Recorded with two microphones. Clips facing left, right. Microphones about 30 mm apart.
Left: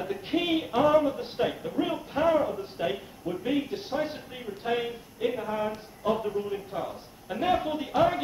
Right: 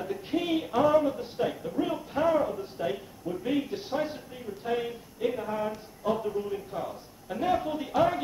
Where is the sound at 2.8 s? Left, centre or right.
Left.